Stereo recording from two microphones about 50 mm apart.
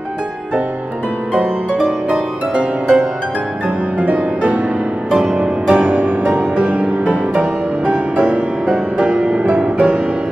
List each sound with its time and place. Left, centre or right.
2.0 s music: right
5.8 s music: right